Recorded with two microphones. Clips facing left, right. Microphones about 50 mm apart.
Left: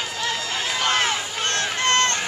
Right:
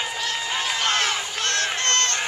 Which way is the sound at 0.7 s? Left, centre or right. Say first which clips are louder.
Left 3 dB; centre.